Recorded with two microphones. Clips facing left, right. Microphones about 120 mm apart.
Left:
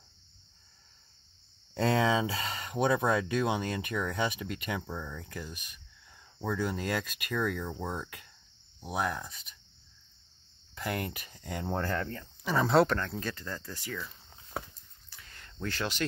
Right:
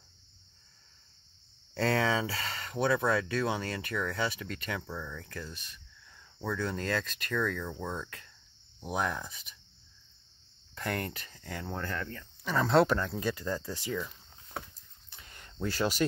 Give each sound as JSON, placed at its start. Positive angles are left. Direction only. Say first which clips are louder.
{"t": 1.8, "sound": "speech", "louder": "left 2 dB", "side_deg": 20}
{"t": 8.8, "sound": "speech", "louder": "even", "side_deg": 0}
{"t": 10.7, "sound": "speech", "louder": "even", "side_deg": 10}
{"t": 11.7, "sound": "speech", "louder": "left 5 dB", "side_deg": 35}
{"t": 12.4, "sound": "speech", "louder": "even", "side_deg": 5}
{"t": 15.0, "sound": "a sound", "louder": "right 1 dB", "side_deg": -20}